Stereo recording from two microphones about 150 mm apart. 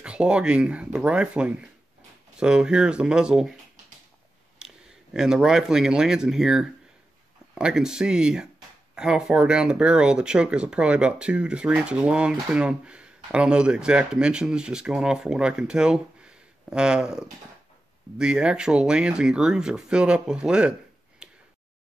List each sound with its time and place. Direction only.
0.0 s speech: 5° right (ahead or behind)
4.6 s speech: 5° right (ahead or behind)
21.2 s a sound: 5° right (ahead or behind)